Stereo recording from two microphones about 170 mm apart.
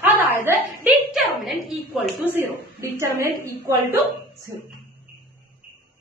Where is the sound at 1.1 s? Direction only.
Centre (ahead or behind).